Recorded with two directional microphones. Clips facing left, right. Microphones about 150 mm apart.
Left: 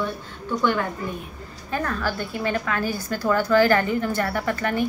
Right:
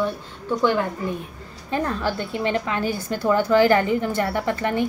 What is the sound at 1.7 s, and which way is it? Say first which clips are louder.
A woman's voice: right 2 dB; 25° right (ahead or behind).